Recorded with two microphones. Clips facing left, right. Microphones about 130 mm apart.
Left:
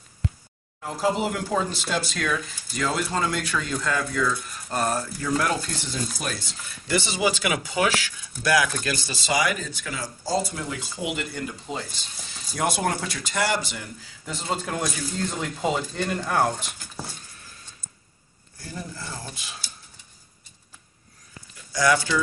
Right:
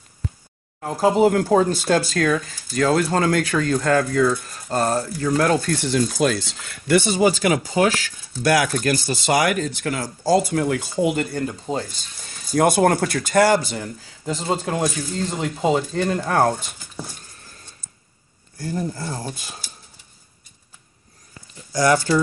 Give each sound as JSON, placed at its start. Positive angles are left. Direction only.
{"t": 0.7, "sound": "speech", "side_deg": -45}
{"t": 5.7, "sound": "speech", "side_deg": -70}
{"t": 7.0, "sound": "speech", "side_deg": -45}
{"t": 16.1, "sound": "speech", "side_deg": -40}
{"t": 18.6, "sound": "speech", "side_deg": -45}
{"t": 21.7, "sound": "speech", "side_deg": -40}